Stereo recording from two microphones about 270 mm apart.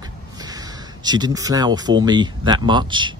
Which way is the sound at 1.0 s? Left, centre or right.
Centre.